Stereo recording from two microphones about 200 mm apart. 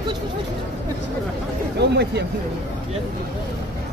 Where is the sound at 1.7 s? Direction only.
55° right (ahead or behind).